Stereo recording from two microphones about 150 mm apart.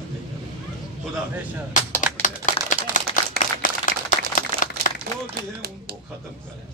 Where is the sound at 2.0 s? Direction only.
60° left (ahead or behind).